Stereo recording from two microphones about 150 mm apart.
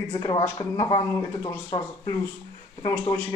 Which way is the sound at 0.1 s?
30° left (ahead or behind).